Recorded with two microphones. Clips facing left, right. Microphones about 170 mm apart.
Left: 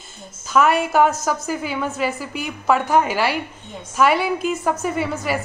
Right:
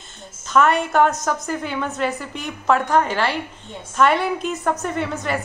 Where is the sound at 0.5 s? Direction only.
5° left (ahead or behind).